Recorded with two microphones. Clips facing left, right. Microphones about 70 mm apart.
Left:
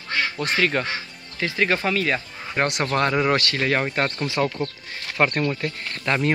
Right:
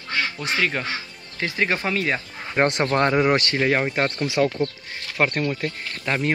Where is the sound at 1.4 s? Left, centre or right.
Centre.